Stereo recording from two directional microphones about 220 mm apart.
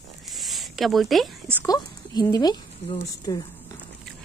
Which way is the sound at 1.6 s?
20° left (ahead or behind).